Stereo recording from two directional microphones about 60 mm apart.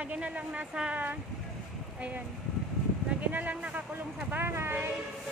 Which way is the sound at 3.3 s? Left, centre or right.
Right.